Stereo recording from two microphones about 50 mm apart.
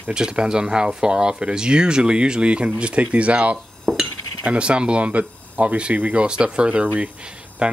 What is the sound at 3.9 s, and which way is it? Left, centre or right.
Cutlery, centre.